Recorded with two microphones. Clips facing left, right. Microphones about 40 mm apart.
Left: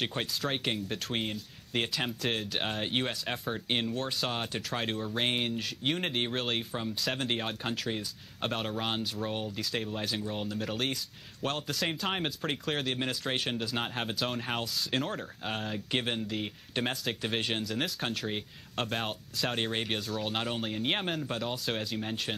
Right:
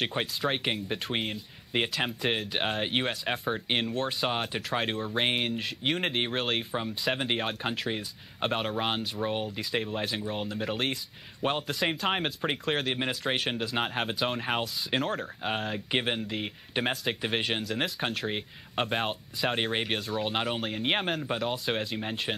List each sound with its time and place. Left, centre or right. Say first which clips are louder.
0.1 s speech: right 3 dB; centre